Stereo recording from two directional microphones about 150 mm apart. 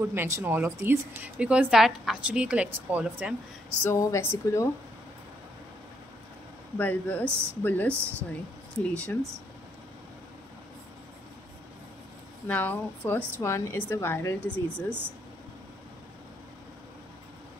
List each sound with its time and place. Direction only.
0.0 s a woman's voice: 15° right (ahead or behind)
3.8 s speech: 15° left (ahead or behind)
6.8 s a woman's voice: 10° left (ahead or behind)
12.4 s a woman's voice: 10° left (ahead or behind)